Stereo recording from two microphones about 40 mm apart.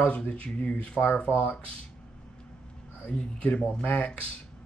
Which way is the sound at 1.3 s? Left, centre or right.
Right.